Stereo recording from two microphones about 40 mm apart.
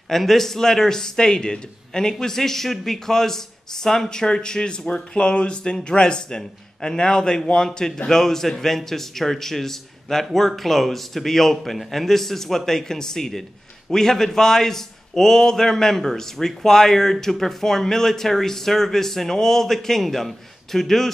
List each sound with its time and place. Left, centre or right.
0.1 s a man's voice: centre